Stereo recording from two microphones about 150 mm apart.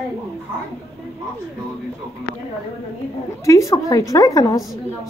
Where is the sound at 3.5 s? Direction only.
20° left (ahead or behind).